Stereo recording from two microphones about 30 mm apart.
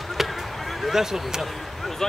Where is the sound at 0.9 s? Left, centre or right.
Centre.